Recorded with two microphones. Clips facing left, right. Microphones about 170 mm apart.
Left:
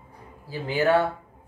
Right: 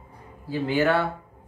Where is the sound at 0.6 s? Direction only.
10° left (ahead or behind).